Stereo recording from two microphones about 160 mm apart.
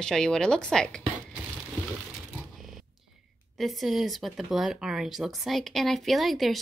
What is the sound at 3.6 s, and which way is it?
A woman's voice, centre (ahead or behind).